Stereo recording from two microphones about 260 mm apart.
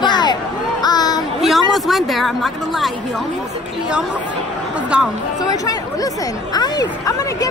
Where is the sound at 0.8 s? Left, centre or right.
Centre.